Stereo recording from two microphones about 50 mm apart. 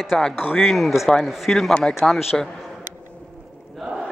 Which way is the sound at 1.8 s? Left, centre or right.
Centre.